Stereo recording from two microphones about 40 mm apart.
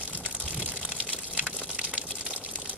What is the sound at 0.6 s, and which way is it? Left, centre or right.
Water, right.